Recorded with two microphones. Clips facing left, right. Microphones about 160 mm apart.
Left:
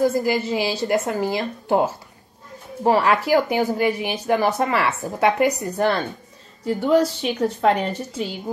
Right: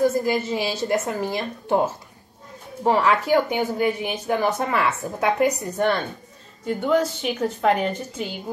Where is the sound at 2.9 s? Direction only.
10° left (ahead or behind).